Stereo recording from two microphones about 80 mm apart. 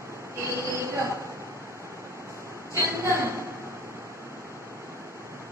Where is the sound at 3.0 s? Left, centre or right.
Right.